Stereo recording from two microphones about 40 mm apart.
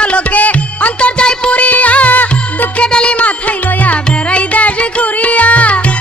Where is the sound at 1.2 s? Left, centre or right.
Left.